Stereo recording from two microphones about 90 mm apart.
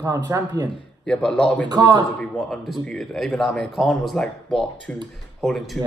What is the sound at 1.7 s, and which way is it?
Speech, 50° right (ahead or behind).